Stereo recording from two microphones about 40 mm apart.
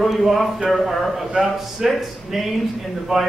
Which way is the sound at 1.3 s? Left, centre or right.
Right.